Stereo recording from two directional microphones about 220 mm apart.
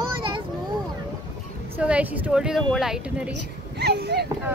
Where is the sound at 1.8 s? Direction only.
5° right (ahead or behind).